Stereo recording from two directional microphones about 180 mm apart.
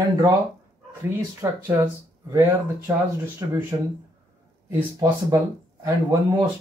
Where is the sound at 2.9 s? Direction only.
15° right (ahead or behind).